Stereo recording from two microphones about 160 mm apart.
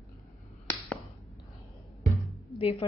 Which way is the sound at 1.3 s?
Centre (ahead or behind).